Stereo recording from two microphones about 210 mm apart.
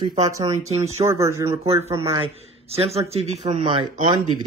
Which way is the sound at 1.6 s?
30° right (ahead or behind).